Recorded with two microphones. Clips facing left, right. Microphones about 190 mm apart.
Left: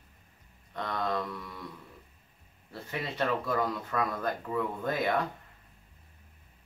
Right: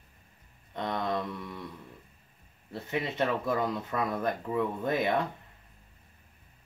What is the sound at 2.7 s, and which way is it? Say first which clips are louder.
Speech: right 4 dB; 20° right (ahead or behind).